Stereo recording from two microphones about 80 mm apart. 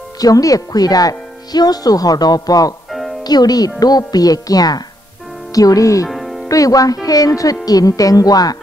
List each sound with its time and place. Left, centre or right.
0.2 s speech: left
2.9 s music: centre
3.3 s speech: left
6.0 s music: centre
6.5 s speech: left